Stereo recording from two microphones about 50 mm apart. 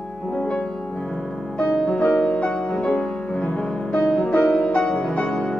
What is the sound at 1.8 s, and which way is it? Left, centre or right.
Music, left.